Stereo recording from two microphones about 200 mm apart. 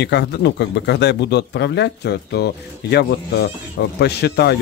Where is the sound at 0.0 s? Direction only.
55° left (ahead or behind).